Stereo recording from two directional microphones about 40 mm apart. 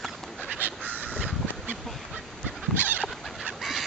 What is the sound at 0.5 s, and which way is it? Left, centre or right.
Duck, right.